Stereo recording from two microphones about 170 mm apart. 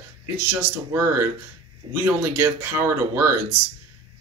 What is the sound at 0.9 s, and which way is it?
Speech, 15° right (ahead or behind).